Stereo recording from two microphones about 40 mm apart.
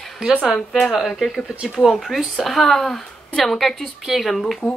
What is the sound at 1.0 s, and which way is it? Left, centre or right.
Speech, centre.